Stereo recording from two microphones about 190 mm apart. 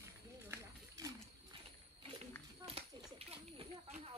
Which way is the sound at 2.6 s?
30° right (ahead or behind).